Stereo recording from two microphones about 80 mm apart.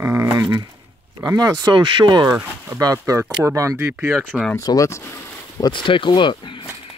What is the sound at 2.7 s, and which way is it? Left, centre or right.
Speech, right.